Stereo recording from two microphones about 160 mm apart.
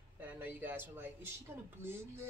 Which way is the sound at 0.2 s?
10° right (ahead or behind).